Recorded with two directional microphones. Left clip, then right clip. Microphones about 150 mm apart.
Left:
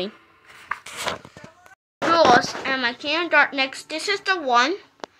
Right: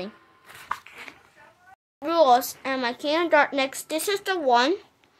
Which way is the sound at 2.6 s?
35° right (ahead or behind).